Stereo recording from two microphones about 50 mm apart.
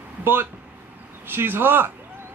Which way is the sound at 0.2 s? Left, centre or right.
Right.